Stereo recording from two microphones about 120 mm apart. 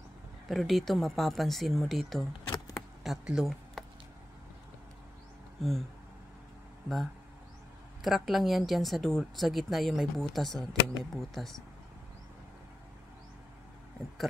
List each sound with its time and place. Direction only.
0.5 s speech: centre (ahead or behind)
2.5 s a sound: 25° left (ahead or behind)
3.0 s speech: 5° right (ahead or behind)
5.6 s speech: centre (ahead or behind)
8.0 s speech: centre (ahead or behind)